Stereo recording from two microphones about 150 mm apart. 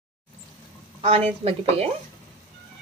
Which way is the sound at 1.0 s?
40° right (ahead or behind).